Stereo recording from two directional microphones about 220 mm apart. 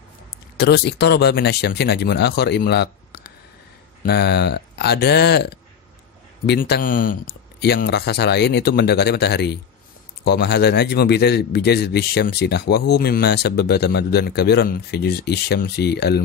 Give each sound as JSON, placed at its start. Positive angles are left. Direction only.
{"t": 0.6, "sound": "a man's voice", "side_deg": 50}